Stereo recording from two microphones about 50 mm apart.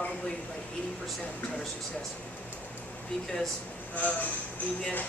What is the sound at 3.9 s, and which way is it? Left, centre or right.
Speech, left.